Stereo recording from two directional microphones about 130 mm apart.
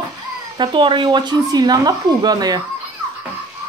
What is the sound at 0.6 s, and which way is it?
Speech, 40° right (ahead or behind).